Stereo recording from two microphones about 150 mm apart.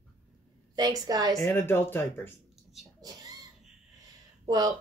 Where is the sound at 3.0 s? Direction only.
25° right (ahead or behind).